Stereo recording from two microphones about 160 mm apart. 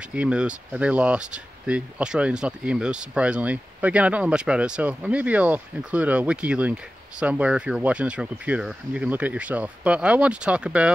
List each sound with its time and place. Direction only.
0.0 s speech: 5° right (ahead or behind)